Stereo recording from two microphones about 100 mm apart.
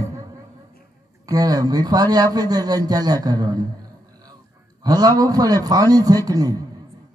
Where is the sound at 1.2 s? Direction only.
40° right (ahead or behind).